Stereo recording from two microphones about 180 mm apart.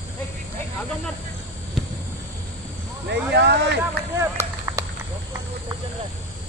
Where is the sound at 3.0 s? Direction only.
70° right (ahead or behind).